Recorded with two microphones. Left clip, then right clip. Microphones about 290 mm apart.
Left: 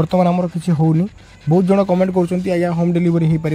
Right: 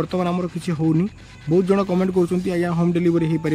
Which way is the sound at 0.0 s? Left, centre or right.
Centre.